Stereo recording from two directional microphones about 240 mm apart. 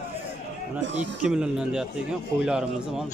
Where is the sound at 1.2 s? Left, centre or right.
Centre.